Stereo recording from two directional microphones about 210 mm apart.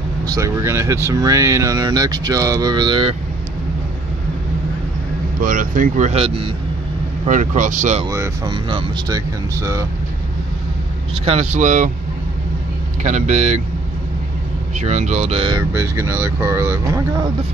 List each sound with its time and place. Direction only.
0.3 s speech: 15° right (ahead or behind)
5.4 s speech: 40° right (ahead or behind)
7.2 s speech: 35° right (ahead or behind)
8.1 s speech: 20° right (ahead or behind)
11.2 s speech: 30° right (ahead or behind)
13.0 s speech: 35° right (ahead or behind)
14.8 s speech: 35° right (ahead or behind); by 17.0 s 15° right (ahead or behind)